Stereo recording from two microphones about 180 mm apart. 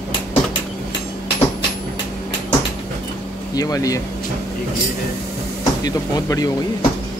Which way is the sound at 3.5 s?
20° left (ahead or behind).